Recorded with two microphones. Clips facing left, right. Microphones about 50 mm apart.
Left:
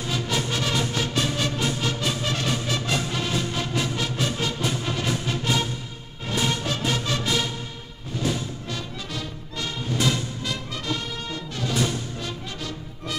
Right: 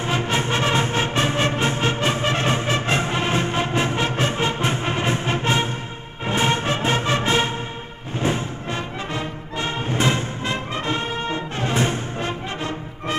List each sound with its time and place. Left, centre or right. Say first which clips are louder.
0.0 s music: right 5 dB; right